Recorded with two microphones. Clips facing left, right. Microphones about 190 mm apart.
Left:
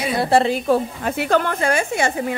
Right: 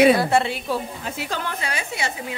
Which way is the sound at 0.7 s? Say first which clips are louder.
Left 8 dB; 60° left (ahead or behind).